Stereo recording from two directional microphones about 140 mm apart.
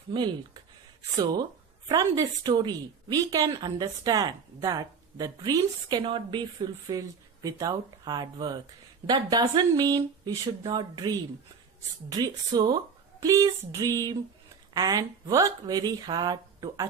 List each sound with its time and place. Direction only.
1.1 s a woman's voice: 30° right (ahead or behind)